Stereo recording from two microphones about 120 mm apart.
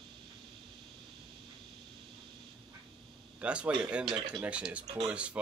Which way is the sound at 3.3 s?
10° right (ahead or behind).